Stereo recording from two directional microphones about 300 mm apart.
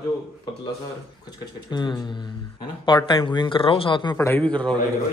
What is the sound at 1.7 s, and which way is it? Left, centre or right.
Speech, centre.